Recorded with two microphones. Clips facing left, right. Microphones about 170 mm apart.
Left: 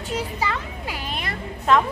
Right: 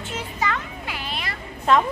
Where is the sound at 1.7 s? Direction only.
Centre (ahead or behind).